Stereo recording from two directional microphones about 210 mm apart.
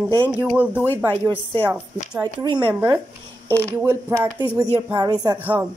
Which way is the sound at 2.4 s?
20° right (ahead or behind).